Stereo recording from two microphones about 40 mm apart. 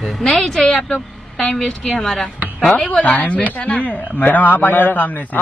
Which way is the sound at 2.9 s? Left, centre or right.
Left.